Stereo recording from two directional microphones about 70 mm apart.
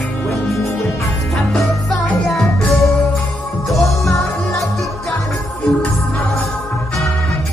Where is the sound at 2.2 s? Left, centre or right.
Centre.